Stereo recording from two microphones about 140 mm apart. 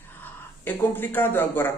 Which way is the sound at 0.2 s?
15° left (ahead or behind).